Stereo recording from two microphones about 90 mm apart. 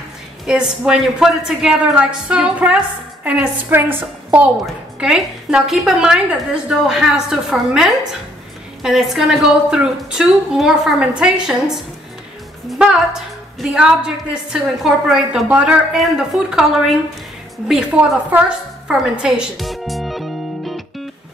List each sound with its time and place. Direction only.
0.5 s a woman's voice: 5° right (ahead or behind)
3.7 s a woman's voice: 25° right (ahead or behind)
5.0 s a woman's voice: 5° right (ahead or behind)